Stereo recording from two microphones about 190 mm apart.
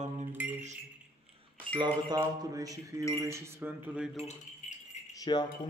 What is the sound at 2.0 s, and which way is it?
Speech, 20° right (ahead or behind).